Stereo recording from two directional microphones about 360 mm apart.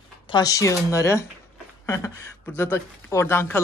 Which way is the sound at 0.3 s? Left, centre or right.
Centre.